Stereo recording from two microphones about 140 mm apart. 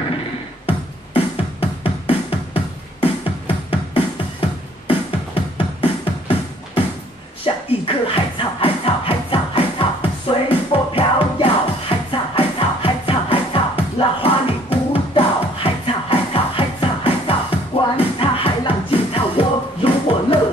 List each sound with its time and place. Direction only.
0.7 s music: 40° left (ahead or behind)